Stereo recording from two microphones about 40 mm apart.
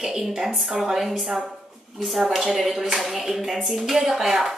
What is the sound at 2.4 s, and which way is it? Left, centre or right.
A woman's voice, centre.